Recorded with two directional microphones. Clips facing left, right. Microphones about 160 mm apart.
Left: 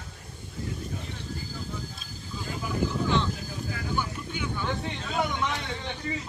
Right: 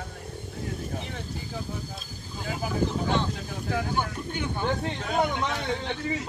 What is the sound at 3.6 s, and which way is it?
Vehicle, 70° right (ahead or behind).